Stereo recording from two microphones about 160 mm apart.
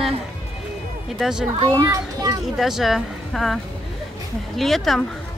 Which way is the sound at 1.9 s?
20° right (ahead or behind).